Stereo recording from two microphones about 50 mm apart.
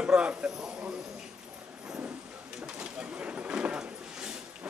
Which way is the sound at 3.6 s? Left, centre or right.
Centre.